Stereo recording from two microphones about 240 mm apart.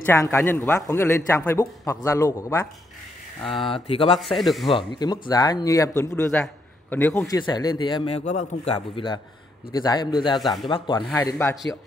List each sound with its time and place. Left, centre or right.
0.0 s speech: centre
3.4 s speech: left
4.4 s speech: centre
4.6 s speech: centre